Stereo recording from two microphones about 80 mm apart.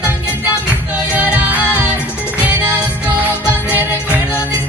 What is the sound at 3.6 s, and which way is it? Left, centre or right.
Music, right.